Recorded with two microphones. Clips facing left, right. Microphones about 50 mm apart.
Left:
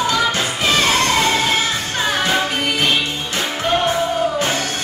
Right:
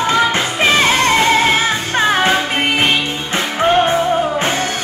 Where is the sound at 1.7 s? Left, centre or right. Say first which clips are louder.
Right 5 dB; right.